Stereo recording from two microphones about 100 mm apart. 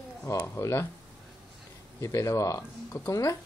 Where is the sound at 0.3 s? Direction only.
30° left (ahead or behind).